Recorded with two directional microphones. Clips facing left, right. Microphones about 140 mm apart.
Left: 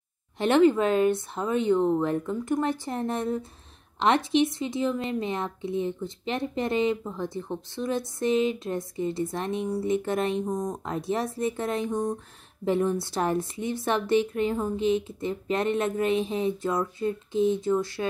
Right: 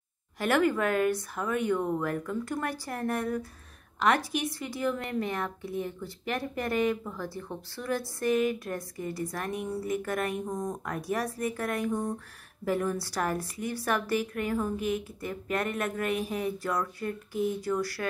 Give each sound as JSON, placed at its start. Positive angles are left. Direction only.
{"t": 0.4, "sound": "a woman's voice", "side_deg": 25}